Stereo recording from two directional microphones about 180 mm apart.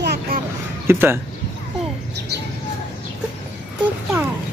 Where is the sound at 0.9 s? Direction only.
15° right (ahead or behind).